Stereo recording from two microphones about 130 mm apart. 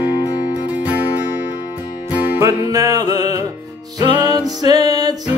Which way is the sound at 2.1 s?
15° right (ahead or behind).